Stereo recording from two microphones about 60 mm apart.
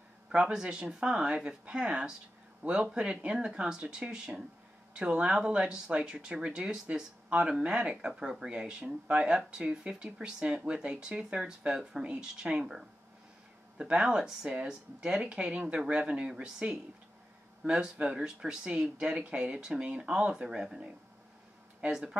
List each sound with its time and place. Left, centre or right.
0.3 s speech: centre